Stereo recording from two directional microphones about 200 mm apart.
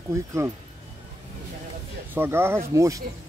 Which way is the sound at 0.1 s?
15° right (ahead or behind).